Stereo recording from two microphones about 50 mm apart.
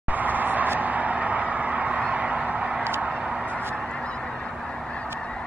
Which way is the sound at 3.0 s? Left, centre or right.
Right.